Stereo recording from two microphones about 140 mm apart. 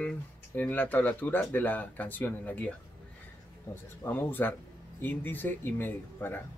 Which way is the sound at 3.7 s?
25° left (ahead or behind).